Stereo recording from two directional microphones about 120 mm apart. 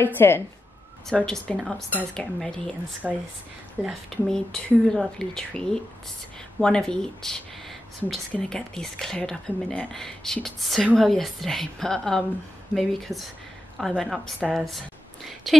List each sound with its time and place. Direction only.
0.0 s speech: 20° left (ahead or behind)
1.0 s speech: 5° left (ahead or behind)
4.3 s a woman's voice: 5° left (ahead or behind)